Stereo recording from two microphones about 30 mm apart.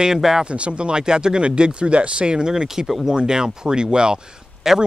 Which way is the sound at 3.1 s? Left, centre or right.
Right.